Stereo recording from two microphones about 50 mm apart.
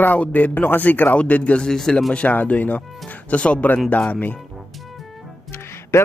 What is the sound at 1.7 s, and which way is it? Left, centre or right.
Speech, centre.